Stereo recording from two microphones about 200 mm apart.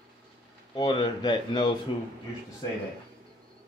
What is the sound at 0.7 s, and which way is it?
A man's voice, 25° left (ahead or behind).